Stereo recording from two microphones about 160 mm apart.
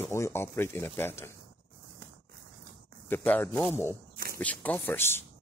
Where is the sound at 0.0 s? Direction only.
15° left (ahead or behind).